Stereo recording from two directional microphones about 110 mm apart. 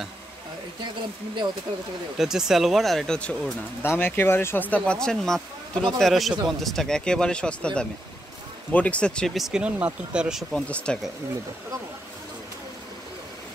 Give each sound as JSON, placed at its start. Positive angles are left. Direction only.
{"t": 2.1, "sound": "speech", "side_deg": -5}
{"t": 3.8, "sound": "speech", "side_deg": 20}
{"t": 10.5, "sound": "speech", "side_deg": 5}